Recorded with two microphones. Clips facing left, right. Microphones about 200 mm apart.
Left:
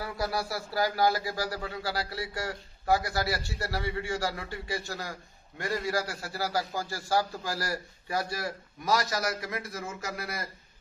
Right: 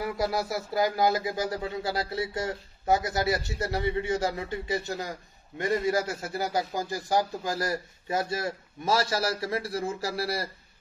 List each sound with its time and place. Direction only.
0.0 s a man's voice: 20° right (ahead or behind)